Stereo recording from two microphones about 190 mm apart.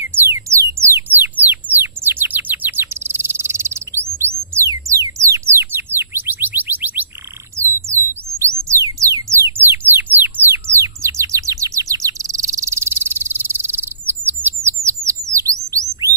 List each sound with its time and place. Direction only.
0.3 s music: 15° right (ahead or behind)
7.5 s a sound: 15° right (ahead or behind)
8.4 s music: 15° right (ahead or behind)
14.0 s bird: 10° right (ahead or behind)